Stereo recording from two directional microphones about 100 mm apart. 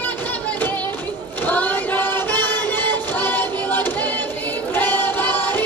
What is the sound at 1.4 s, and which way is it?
Music, 20° left (ahead or behind).